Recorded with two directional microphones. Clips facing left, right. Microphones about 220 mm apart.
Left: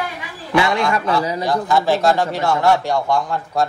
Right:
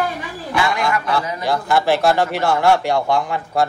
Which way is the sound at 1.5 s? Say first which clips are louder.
Right 1 dB; 5° right (ahead or behind).